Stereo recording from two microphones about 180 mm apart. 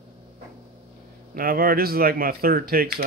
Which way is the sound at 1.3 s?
55° right (ahead or behind).